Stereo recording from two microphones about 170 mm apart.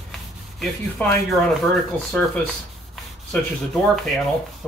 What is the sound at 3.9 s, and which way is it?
Speech, centre (ahead or behind).